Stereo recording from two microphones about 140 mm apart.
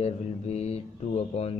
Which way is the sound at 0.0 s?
50° left (ahead or behind).